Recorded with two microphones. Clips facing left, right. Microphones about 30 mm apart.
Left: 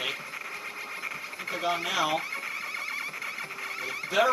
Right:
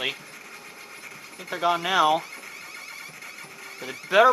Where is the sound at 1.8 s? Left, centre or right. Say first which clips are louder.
Right 7 dB; centre.